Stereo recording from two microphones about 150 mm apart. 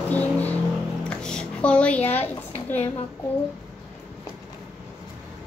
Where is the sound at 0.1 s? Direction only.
10° left (ahead or behind).